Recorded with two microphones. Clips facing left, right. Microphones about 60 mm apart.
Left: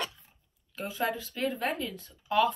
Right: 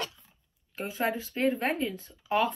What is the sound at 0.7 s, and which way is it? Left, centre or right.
Speech, right.